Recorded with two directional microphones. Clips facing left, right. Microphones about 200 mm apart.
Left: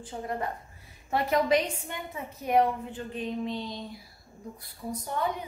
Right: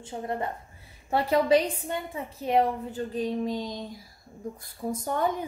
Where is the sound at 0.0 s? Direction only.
25° right (ahead or behind).